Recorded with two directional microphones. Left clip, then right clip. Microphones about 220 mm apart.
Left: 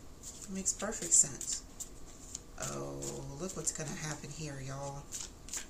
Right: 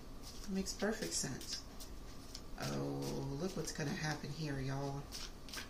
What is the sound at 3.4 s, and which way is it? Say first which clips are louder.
Speech: left 2 dB; 40° left (ahead or behind).